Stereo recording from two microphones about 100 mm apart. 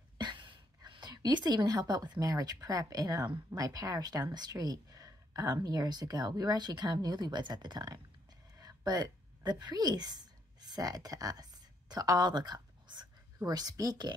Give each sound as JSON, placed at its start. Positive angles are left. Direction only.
{"t": 0.2, "sound": "a woman's voice", "side_deg": -50}